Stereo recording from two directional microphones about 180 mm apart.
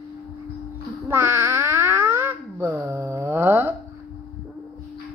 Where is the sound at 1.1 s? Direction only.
10° right (ahead or behind).